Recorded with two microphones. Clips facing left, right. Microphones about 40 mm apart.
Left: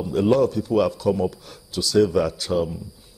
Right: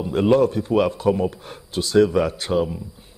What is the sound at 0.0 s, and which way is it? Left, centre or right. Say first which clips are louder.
A man's voice: right 2 dB; right.